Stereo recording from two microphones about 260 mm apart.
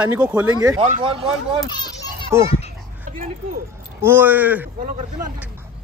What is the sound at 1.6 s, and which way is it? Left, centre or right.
Children playing, centre.